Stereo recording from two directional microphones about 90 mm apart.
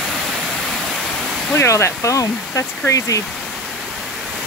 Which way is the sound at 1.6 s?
30° left (ahead or behind).